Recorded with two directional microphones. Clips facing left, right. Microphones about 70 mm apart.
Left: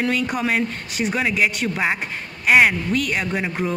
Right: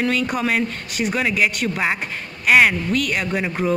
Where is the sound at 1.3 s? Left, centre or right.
Left.